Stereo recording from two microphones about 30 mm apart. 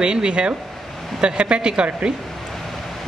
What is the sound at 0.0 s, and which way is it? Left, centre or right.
Speech, right.